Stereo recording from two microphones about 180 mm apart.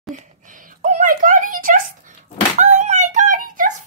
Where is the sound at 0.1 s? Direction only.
45° right (ahead or behind).